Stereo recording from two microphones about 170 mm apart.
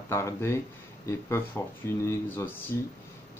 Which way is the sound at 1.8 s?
15° left (ahead or behind).